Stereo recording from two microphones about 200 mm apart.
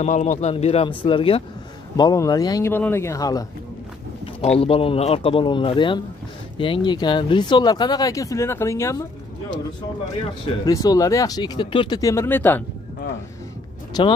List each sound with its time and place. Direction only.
0.0 s speech: 40° left (ahead or behind); by 3.4 s 20° left (ahead or behind)
4.4 s speech: 30° left (ahead or behind); by 9.0 s 15° left (ahead or behind)
10.4 s speech: 20° left (ahead or behind)